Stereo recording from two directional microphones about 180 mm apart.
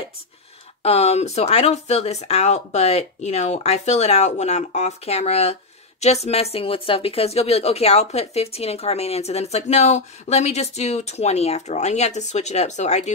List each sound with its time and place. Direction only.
0.8 s speech: 35° left (ahead or behind)